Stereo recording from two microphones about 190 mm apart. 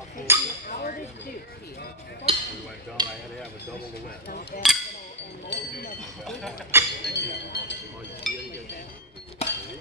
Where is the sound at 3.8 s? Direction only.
50° left (ahead or behind).